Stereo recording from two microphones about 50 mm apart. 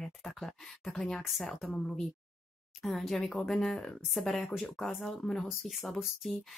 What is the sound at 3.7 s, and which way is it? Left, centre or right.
Speech, centre.